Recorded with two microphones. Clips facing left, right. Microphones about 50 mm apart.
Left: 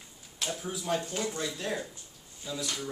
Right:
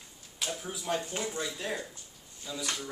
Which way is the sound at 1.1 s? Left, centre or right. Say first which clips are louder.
Left 1 dB; centre.